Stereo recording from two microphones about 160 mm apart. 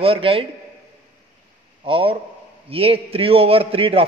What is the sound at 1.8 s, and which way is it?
A man's voice, 35° right (ahead or behind).